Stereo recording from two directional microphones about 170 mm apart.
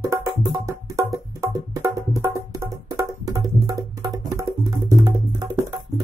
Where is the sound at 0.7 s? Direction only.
15° right (ahead or behind).